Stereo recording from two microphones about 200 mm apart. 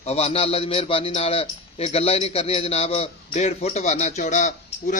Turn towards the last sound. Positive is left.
turn(degrees=40)  # may be behind; listen again after turning